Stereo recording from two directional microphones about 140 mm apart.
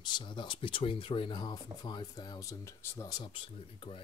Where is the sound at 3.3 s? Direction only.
40° left (ahead or behind).